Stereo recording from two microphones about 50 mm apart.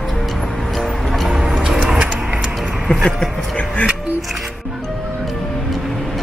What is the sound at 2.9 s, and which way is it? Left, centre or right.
Speech, centre.